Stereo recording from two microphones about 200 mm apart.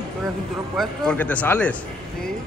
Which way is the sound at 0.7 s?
5° left (ahead or behind).